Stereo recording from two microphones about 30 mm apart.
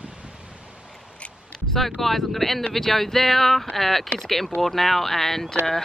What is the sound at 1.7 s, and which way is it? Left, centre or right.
Speech, centre.